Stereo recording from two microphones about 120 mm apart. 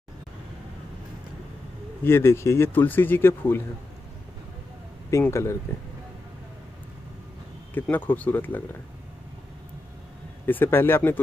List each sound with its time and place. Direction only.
2.0 s speech: 20° left (ahead or behind)
5.1 s speech: 25° left (ahead or behind)
7.7 s speech: 15° left (ahead or behind)
10.4 s speech: 15° left (ahead or behind)